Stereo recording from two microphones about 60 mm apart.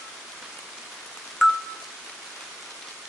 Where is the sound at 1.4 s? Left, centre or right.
Centre.